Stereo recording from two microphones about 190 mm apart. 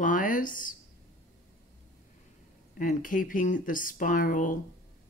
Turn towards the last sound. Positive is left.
turn(degrees=45)  # may be behind; listen again after turning